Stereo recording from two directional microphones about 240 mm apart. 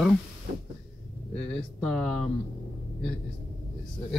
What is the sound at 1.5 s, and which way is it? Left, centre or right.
Speech, centre.